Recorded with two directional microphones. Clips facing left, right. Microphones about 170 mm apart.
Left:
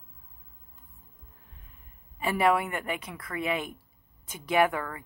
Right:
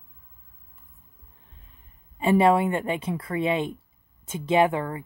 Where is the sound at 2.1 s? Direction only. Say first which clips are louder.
Right 6 dB; 25° right (ahead or behind).